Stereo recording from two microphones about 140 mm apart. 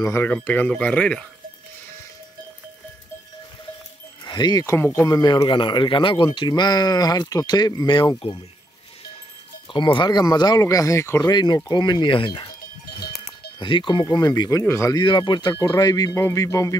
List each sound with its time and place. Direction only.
0.0 s speech: 15° left (ahead or behind)
4.2 s speech: 30° left (ahead or behind)
9.7 s speech: 35° left (ahead or behind)
13.6 s speech: 35° left (ahead or behind)
14.6 s speech: 15° left (ahead or behind)
15.0 s speech: 35° left (ahead or behind)